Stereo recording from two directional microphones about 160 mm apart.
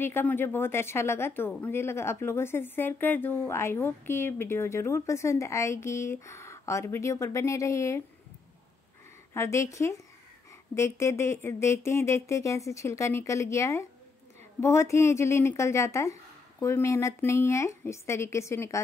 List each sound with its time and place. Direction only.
0.0 s speech: 15° left (ahead or behind)
9.3 s speech: 15° left (ahead or behind)